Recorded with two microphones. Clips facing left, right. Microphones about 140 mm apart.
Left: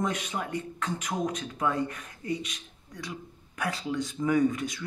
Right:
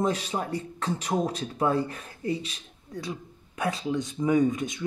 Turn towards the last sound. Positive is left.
turn(degrees=-20)  # may be behind; listen again after turning